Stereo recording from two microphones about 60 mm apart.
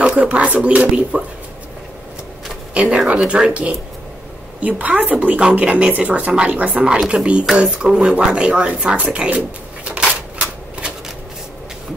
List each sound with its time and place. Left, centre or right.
0.0 s speech: right
2.7 s speech: centre